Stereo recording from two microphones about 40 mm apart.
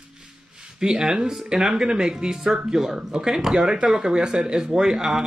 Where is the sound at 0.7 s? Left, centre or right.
Centre.